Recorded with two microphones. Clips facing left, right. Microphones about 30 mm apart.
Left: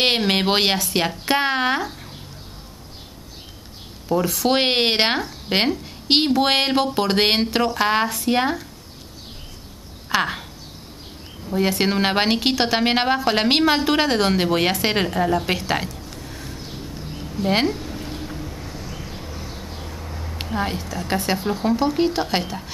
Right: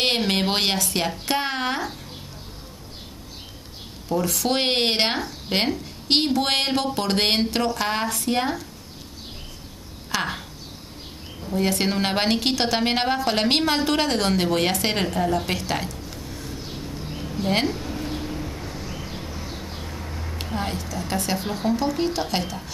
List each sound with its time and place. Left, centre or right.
0.0 s a woman's voice: centre
4.1 s a woman's voice: centre
10.1 s a woman's voice: centre
11.7 s a woman's voice: centre
16.1 s a sound: centre
17.5 s a woman's voice: centre
17.7 s a sound: centre
20.5 s a woman's voice: centre
21.4 s speech: centre
21.6 s a woman's voice: centre